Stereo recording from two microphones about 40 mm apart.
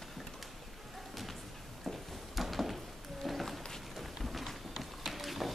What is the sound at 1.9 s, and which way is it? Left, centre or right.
Music, centre.